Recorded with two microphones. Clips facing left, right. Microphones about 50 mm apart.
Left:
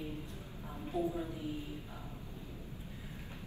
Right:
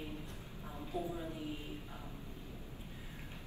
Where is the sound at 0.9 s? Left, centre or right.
Left.